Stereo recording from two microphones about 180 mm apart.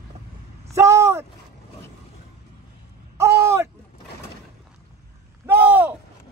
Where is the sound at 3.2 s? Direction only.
15° right (ahead or behind).